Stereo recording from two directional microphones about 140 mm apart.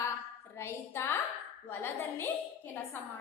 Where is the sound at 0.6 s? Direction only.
20° left (ahead or behind).